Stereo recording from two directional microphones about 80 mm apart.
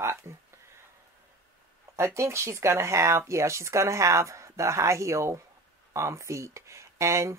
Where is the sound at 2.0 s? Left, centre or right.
Right.